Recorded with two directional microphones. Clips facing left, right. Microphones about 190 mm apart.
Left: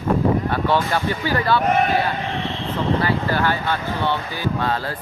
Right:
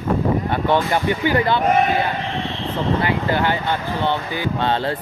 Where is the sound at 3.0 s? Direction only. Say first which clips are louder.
Right 1 dB; 20° right (ahead or behind).